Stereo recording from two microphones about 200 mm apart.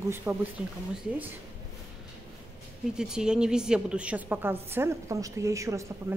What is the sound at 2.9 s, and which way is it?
A woman's voice, 5° right (ahead or behind).